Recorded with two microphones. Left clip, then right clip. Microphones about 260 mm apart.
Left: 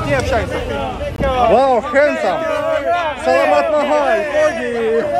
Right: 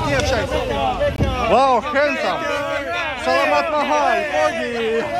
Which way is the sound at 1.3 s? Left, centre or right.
Centre.